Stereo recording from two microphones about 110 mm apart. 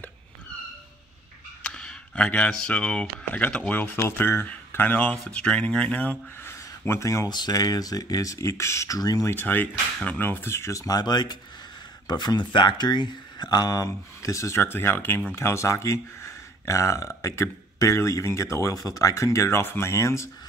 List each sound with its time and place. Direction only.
1.6 s speech: 5° left (ahead or behind); by 7.2 s 30° left (ahead or behind)
7.2 s speech: 40° left (ahead or behind)
9.3 s speech: 15° left (ahead or behind)